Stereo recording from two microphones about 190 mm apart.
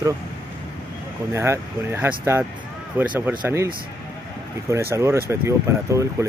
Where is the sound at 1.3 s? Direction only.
15° right (ahead or behind).